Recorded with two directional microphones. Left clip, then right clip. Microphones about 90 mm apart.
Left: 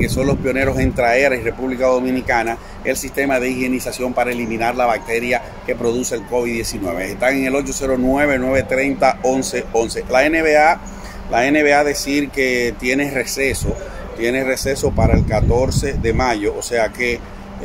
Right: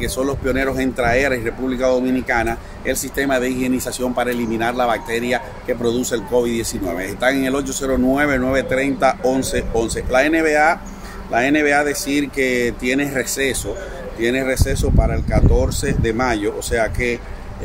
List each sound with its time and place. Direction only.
0.0 s speech: 20° right (ahead or behind)
0.5 s speech: 10° right (ahead or behind)
7.9 s speech: 10° right (ahead or behind)
13.2 s speech: 20° right (ahead or behind)